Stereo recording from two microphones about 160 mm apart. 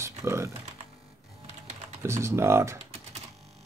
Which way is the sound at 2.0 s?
15° right (ahead or behind).